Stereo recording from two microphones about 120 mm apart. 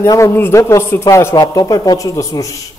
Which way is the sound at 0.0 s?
25° left (ahead or behind).